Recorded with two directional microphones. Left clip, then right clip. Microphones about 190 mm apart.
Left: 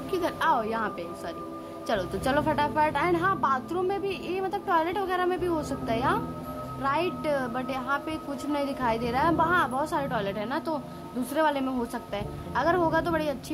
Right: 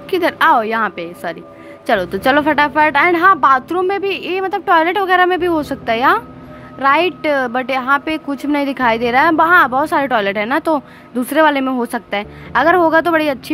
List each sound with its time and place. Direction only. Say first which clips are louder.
0.1 s a woman's voice: right 13 dB; 25° right (ahead or behind)